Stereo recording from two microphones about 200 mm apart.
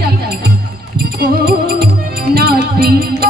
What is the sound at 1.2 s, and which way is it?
Music, 50° right (ahead or behind).